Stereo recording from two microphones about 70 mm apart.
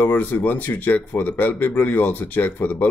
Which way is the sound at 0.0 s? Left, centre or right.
Left.